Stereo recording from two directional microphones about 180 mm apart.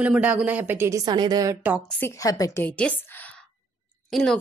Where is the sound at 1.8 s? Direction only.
15° left (ahead or behind).